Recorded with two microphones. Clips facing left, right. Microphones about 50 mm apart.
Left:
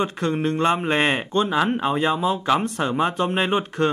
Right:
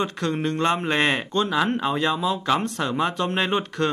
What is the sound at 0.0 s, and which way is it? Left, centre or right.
Speech, centre.